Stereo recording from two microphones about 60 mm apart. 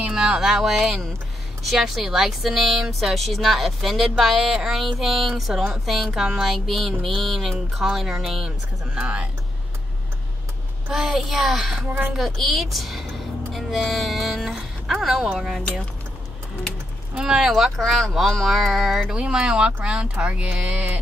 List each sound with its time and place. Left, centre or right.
0.0 s a sound: centre
0.5 s speech: centre
8.5 s speech: centre
10.9 s speech: centre
17.1 s speech: centre
17.7 s speech: centre